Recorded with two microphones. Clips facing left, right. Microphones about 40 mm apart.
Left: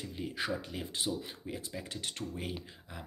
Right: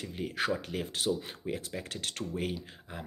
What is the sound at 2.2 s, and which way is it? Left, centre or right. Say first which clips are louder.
Speech: right 3 dB; centre.